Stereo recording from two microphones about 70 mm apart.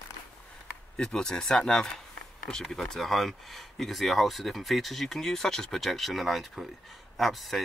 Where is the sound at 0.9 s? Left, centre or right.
Centre.